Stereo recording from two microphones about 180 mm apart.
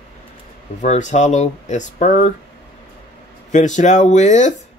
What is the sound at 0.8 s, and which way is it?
Speech, 40° left (ahead or behind).